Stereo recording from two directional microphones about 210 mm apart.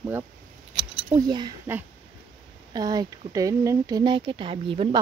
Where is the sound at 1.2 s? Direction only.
20° right (ahead or behind).